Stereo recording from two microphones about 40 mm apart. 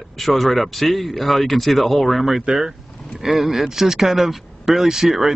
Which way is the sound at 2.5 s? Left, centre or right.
Centre.